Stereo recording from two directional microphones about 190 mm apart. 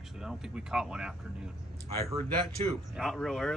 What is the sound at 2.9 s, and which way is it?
Speech, centre (ahead or behind).